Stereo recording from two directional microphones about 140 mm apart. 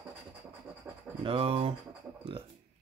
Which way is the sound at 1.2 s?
40° right (ahead or behind).